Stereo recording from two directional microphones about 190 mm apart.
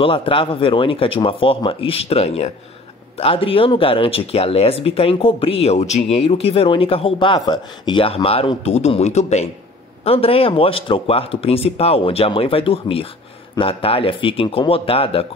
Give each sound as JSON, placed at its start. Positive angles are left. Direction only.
{"t": 0.0, "sound": "speech", "side_deg": 25}